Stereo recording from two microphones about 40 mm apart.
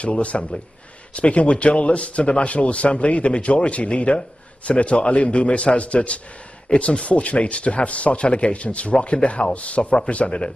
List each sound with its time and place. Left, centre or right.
0.0 s a man's voice: left